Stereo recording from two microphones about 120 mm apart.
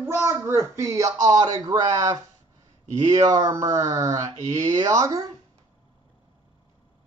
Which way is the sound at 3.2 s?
30° right (ahead or behind).